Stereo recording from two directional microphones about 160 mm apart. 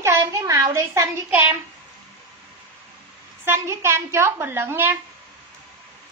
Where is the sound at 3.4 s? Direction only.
15° right (ahead or behind).